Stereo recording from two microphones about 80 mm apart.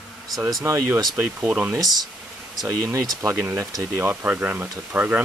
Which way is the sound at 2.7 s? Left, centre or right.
Right.